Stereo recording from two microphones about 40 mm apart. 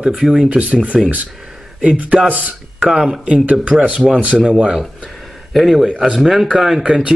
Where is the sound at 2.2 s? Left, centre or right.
Right.